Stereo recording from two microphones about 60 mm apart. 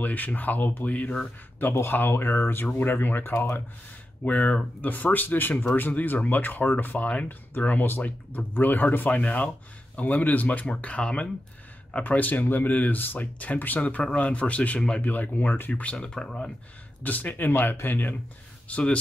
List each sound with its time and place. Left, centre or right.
0.0 s speech: left
1.6 s speech: left
15.7 s speech: left
17.0 s speech: left
18.7 s speech: left